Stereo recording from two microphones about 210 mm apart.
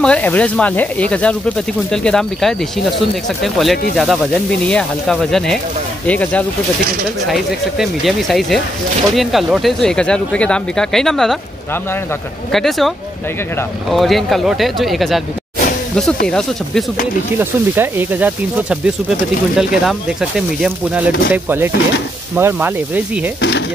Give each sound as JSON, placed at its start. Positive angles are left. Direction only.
{"t": 0.0, "sound": "speech", "side_deg": 5}
{"t": 12.5, "sound": "speech", "side_deg": 0}
{"t": 16.3, "sound": "speech", "side_deg": 0}
{"t": 17.4, "sound": "speech", "side_deg": -10}